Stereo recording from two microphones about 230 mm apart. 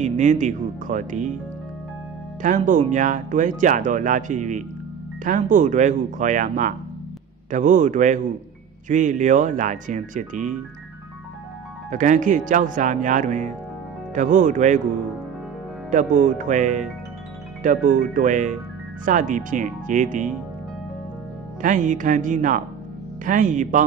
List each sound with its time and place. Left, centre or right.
0.0 s speech: right
2.4 s speech: right
11.9 s speech: right
15.9 s speech: right
21.5 s speech: right